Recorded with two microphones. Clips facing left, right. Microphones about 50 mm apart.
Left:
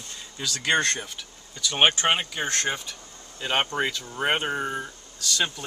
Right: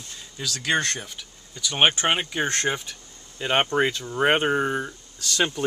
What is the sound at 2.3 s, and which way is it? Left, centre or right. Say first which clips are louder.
Speech: right 3 dB; right.